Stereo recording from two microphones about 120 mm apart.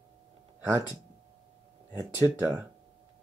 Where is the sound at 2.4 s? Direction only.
15° right (ahead or behind).